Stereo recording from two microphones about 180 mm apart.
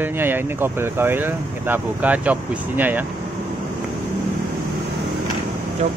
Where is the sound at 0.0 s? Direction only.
10° right (ahead or behind).